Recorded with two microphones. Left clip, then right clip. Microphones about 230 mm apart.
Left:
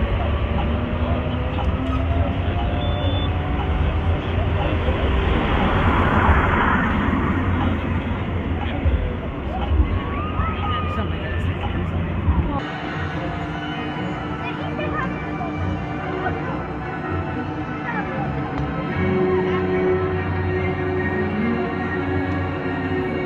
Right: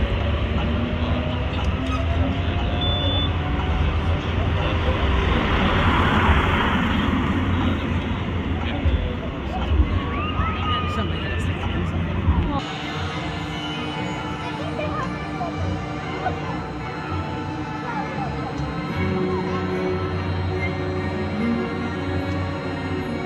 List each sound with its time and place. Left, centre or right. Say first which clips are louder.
6.1 s vehicle: left 2 dB; centre